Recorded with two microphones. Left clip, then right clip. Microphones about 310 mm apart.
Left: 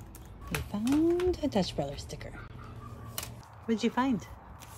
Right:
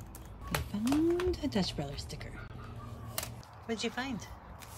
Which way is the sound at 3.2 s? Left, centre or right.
Centre.